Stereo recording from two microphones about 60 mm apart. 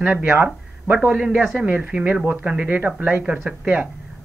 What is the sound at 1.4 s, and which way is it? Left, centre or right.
Speech, centre.